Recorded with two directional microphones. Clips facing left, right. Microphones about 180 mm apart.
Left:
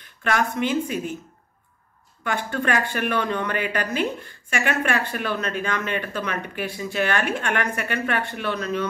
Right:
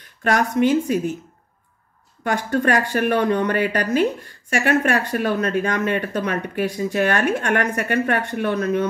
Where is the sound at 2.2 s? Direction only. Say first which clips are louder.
Right 5 dB; 40° right (ahead or behind).